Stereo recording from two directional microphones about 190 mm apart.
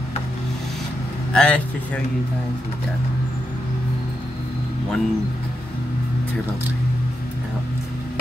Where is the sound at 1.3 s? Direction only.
5° left (ahead or behind).